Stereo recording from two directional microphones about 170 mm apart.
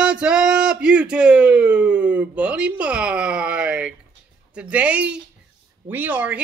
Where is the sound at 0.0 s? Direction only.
5° right (ahead or behind).